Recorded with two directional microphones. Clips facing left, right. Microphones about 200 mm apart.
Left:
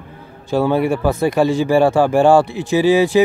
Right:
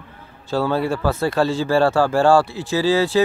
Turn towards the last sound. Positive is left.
turn(degrees=15)  # may be behind; listen again after turning